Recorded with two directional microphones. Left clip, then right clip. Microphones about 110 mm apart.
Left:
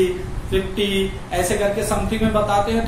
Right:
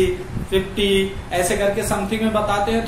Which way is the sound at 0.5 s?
20° right (ahead or behind).